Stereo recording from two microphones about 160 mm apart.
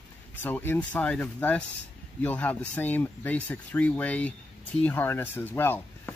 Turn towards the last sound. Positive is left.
turn(degrees=10)  # may be behind; listen again after turning